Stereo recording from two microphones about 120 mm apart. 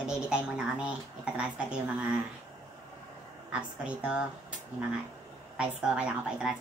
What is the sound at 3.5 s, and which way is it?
Speech, 10° right (ahead or behind).